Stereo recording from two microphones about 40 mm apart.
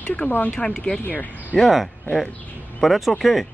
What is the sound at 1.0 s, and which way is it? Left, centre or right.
Speech, left.